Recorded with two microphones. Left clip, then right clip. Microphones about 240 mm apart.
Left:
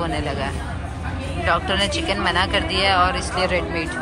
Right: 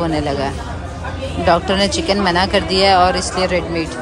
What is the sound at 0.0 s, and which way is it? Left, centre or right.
Speech, centre.